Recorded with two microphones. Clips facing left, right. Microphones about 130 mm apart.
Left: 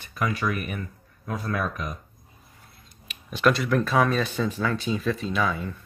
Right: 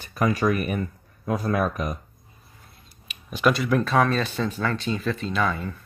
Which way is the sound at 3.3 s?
5° right (ahead or behind).